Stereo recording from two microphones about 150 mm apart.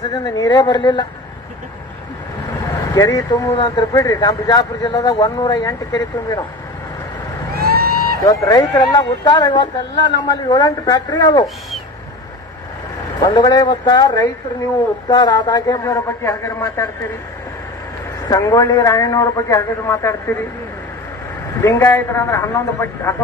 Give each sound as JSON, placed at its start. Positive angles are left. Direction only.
{"t": 0.0, "sound": "speech", "side_deg": 25}
{"t": 2.9, "sound": "speech", "side_deg": 25}
{"t": 7.5, "sound": "a sound", "side_deg": -90}
{"t": 8.2, "sound": "speech", "side_deg": 25}
{"t": 13.2, "sound": "speech", "side_deg": 25}
{"t": 18.3, "sound": "speech", "side_deg": 25}
{"t": 21.5, "sound": "a man's voice", "side_deg": 15}